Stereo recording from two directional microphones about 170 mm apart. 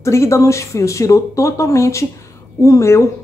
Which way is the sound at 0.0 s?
15° left (ahead or behind).